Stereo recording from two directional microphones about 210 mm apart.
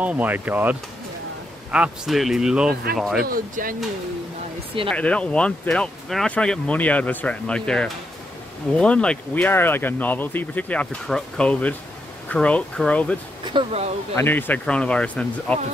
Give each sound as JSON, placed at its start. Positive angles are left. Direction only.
{"t": 0.0, "sound": "speech", "side_deg": -5}
{"t": 3.2, "sound": "speech", "side_deg": -45}
{"t": 4.8, "sound": "speech", "side_deg": 5}
{"t": 13.5, "sound": "speech", "side_deg": -25}
{"t": 14.1, "sound": "speech", "side_deg": 10}